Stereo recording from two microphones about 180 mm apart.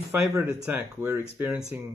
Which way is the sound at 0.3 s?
10° right (ahead or behind).